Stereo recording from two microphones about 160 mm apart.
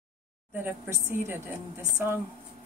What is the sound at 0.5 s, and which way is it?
Speech, 10° right (ahead or behind).